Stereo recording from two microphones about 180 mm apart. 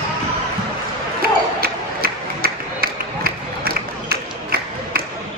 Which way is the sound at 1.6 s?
55° right (ahead or behind).